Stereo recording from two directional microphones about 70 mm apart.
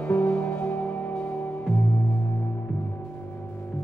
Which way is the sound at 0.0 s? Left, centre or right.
Centre.